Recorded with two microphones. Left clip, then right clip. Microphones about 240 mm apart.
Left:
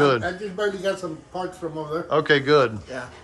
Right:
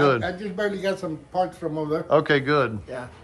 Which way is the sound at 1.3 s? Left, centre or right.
Right.